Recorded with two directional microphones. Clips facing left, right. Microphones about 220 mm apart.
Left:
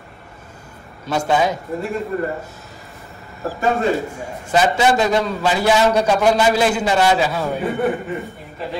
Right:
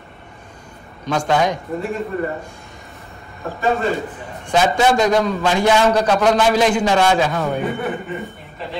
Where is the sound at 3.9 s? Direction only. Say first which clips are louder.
Left 3 dB; 5° left (ahead or behind).